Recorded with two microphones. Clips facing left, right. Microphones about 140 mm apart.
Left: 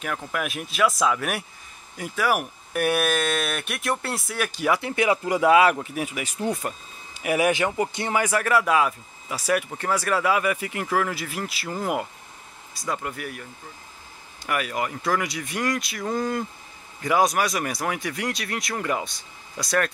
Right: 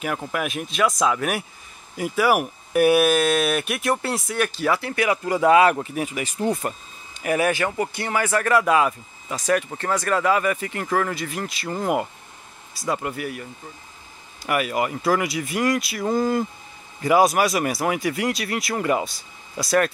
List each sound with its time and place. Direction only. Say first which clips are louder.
0.3 s speech: right 3 dB; centre (ahead or behind)
4.5 s speech: right 1 dB; 15° left (ahead or behind)
5.4 s speech: right 2 dB; 5° left (ahead or behind)
7.2 s speech: even; 10° left (ahead or behind)